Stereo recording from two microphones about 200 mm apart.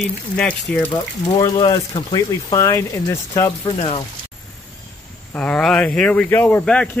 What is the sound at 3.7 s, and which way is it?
Speech, 30° left (ahead or behind).